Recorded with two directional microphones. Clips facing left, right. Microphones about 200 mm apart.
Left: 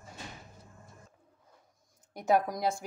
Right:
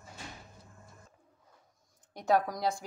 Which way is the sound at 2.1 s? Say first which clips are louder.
Left 1 dB; 10° left (ahead or behind).